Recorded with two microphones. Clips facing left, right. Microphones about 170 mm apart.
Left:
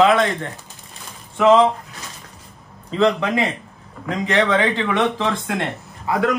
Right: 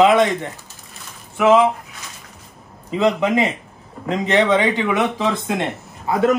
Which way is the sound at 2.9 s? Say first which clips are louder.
Right 1 dB; 15° right (ahead or behind).